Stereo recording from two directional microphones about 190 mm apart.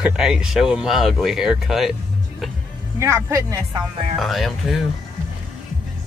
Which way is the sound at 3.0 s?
15° right (ahead or behind).